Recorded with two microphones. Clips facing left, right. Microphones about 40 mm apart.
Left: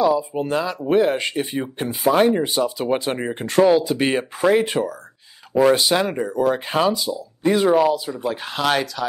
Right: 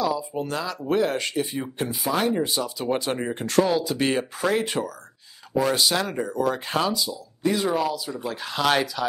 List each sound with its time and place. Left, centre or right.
0.0 s speech: left
5.5 s speech: left
8.1 s speech: centre
8.4 s speech: centre
8.6 s speech: centre